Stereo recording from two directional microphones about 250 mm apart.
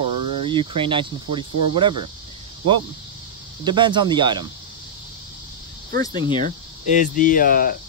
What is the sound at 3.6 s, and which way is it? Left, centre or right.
Speech, centre.